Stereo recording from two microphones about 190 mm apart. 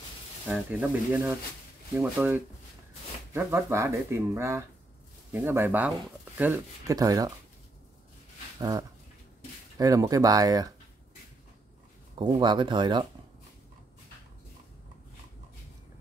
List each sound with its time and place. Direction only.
0.5 s speech: 10° right (ahead or behind)
8.5 s a sound: 20° right (ahead or behind)
9.8 s speech: 20° right (ahead or behind)
12.2 s speech: 25° right (ahead or behind)